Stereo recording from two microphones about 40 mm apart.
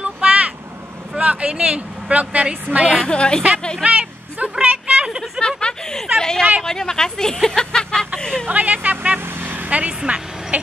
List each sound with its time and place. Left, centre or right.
0.0 s vehicle: right
1.2 s a woman's voice: right
3.1 s speech: left
4.4 s a sound: right
5.6 s a sound: centre
6.1 s speech: centre
7.4 s a sound: centre
8.2 s speech: left
8.5 s a woman's voice: right
9.2 s vehicle: right
9.7 s a woman's voice: right